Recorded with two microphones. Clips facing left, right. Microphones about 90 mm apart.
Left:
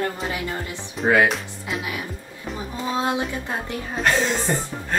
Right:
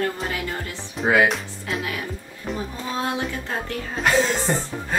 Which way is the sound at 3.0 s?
20° left (ahead or behind).